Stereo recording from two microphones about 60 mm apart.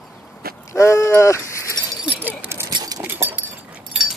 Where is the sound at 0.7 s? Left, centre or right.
Left.